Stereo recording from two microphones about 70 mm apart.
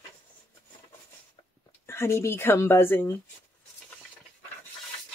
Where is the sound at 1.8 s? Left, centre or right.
Left.